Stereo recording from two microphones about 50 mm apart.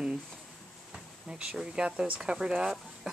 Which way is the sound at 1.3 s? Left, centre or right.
Centre.